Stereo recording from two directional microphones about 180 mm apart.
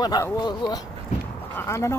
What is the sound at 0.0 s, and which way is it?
Speech, 20° left (ahead or behind).